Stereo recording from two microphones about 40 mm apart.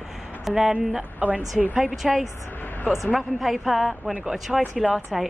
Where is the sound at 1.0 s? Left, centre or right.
Right.